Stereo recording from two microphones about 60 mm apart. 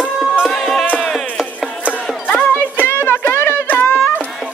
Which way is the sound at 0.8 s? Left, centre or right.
Left.